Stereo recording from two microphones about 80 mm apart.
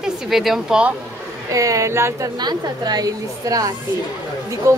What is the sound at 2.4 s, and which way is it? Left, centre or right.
Speech, right.